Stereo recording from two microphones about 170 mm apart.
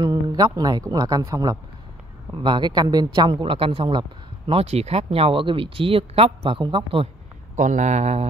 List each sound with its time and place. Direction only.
0.0 s speech: 25° right (ahead or behind)
7.5 s speech: 45° right (ahead or behind)